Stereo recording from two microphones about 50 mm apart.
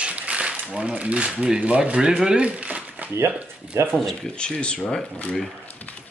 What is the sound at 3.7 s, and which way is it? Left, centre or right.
Speech, right.